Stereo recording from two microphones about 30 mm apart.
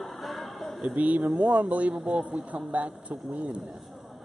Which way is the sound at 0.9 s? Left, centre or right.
Right.